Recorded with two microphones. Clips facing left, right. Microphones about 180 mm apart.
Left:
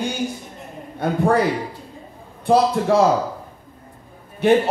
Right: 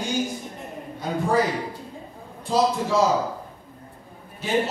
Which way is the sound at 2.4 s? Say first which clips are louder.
Left 6 dB; 60° left (ahead or behind).